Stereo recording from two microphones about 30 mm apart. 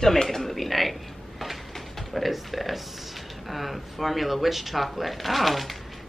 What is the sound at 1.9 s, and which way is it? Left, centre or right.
Speech, centre.